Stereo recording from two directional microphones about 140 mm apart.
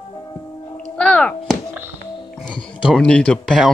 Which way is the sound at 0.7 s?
10° left (ahead or behind).